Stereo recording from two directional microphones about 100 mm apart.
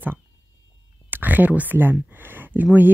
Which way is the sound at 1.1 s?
15° right (ahead or behind).